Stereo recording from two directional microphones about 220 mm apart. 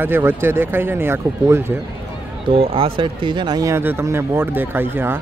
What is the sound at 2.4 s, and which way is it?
Speech, 25° right (ahead or behind).